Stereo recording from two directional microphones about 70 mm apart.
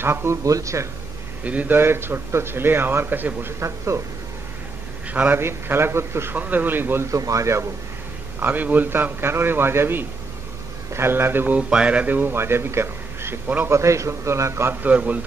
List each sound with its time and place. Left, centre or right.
0.0 s a man's voice: right
1.4 s speech: right
1.8 s a man's voice: right
3.5 s a man's voice: right
5.1 s a man's voice: right
5.4 s a man's voice: right
6.3 s speech: right
7.1 s a man's voice: right
8.4 s a man's voice: right
11.7 s a man's voice: centre; by 14.8 s right
14.8 s speech: right